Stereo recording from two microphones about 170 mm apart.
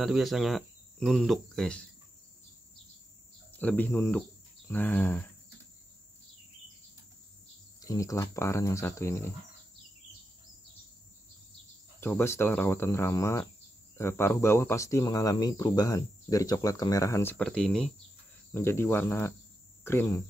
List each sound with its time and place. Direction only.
0.0 s cricket: centre (ahead or behind)
3.5 s speech: 10° left (ahead or behind)
7.8 s speech: 20° left (ahead or behind)
12.0 s speech: 15° left (ahead or behind)
18.5 s speech: 15° left (ahead or behind)